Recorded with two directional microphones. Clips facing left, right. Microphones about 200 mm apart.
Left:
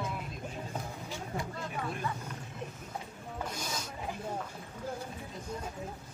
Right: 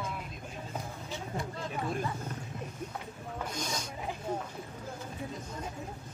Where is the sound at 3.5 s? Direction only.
5° left (ahead or behind).